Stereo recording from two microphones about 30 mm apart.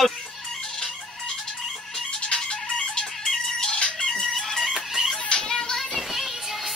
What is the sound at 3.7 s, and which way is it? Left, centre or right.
Fowl, left.